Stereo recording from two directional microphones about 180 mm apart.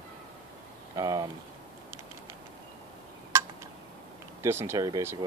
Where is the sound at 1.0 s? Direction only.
20° right (ahead or behind).